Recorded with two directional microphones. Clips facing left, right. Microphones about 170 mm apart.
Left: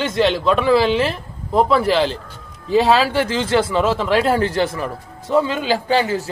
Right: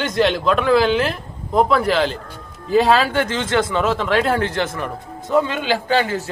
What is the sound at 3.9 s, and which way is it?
Speech, 5° left (ahead or behind).